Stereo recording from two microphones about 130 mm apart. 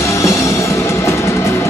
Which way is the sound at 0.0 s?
25° left (ahead or behind).